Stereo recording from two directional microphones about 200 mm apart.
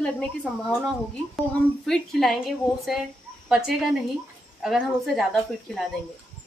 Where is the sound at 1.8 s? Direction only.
Centre (ahead or behind).